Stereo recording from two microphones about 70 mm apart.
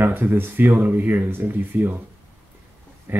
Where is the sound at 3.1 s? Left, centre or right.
Right.